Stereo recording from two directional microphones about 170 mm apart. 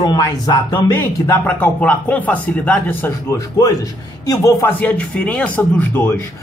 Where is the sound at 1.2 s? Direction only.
10° left (ahead or behind).